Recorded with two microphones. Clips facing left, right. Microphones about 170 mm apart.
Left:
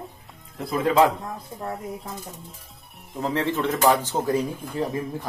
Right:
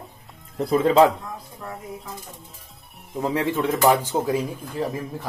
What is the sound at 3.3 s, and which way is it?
Speech, 15° right (ahead or behind).